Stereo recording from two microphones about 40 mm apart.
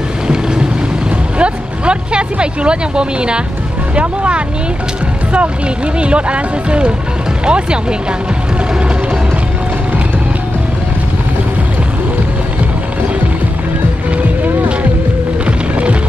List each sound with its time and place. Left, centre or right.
1.4 s vehicle: right
3.9 s speech: right
5.9 s speech: right
15.4 s music: right